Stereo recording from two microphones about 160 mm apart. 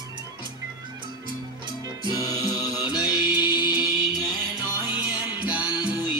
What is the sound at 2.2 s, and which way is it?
Music, 25° left (ahead or behind).